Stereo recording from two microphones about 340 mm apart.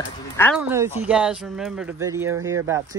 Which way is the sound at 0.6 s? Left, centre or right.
Centre.